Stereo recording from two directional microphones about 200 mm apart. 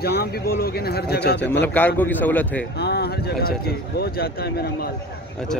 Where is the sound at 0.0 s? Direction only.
50° left (ahead or behind).